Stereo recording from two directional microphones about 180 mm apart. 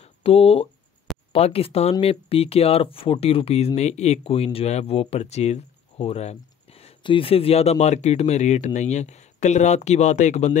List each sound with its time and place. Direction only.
0.0 s speech: 35° left (ahead or behind)